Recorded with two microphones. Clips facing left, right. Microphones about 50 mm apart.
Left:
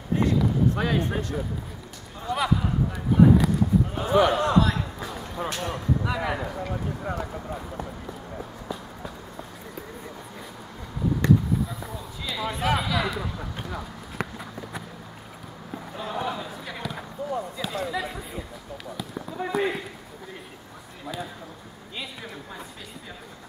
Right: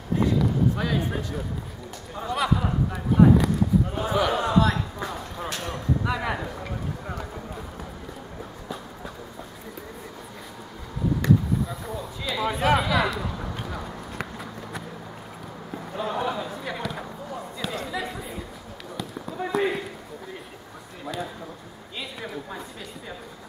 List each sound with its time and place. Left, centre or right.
0.2 s basketball bounce: centre
0.8 s speech: left
2.2 s speech: centre
11.2 s basketball bounce: centre
11.8 s speech: centre
13.1 s run: centre
15.7 s basketball bounce: centre
21.0 s speech: centre